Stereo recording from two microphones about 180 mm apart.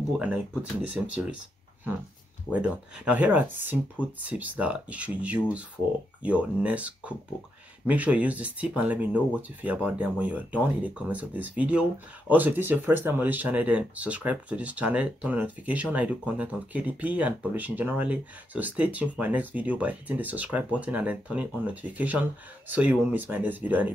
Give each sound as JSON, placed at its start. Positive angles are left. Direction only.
{"t": 0.2, "sound": "speech", "side_deg": -10}
{"t": 2.5, "sound": "speech", "side_deg": -5}